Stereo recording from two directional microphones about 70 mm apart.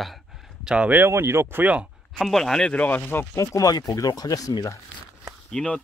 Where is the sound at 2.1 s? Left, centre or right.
Centre.